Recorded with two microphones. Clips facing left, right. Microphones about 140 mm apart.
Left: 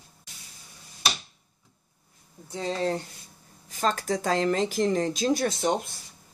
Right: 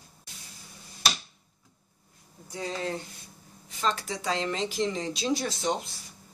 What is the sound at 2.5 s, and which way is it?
Speech, 30° left (ahead or behind).